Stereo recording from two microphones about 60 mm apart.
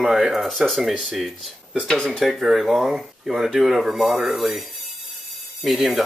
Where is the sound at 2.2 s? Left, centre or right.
Centre.